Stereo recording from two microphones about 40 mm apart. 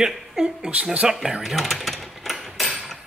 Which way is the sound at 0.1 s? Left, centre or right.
Centre.